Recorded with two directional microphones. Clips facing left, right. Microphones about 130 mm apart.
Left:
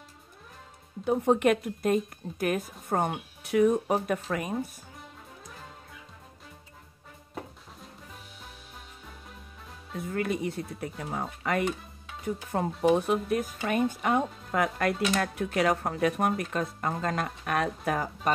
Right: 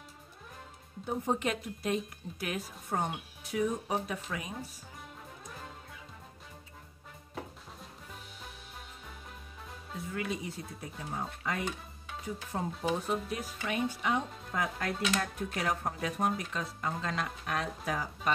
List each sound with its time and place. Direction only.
1.0 s speech: 70° left (ahead or behind); by 4.6 s 55° left (ahead or behind)
9.9 s speech: 55° left (ahead or behind)
12.8 s speech: 65° left (ahead or behind)